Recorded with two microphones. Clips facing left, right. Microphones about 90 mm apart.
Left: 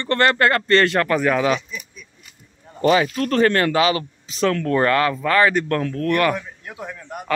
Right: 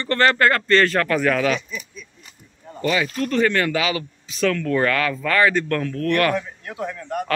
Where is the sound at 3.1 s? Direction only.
70° left (ahead or behind).